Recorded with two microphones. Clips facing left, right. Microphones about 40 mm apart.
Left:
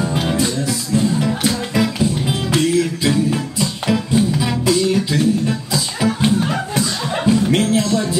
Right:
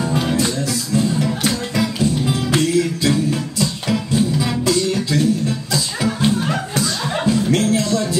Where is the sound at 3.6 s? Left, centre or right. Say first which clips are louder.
Left 2 dB; centre.